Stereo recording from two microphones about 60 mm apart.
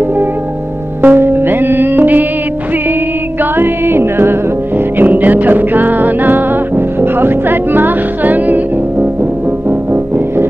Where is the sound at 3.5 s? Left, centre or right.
Right.